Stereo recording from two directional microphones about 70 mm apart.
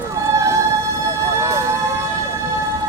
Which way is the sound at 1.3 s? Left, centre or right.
Right.